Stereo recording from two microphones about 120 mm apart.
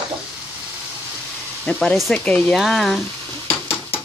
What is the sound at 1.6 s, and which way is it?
Speech, 10° left (ahead or behind).